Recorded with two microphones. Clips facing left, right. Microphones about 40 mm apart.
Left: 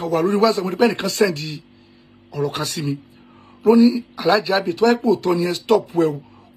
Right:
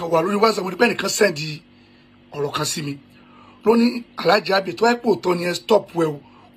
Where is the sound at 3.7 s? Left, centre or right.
Right.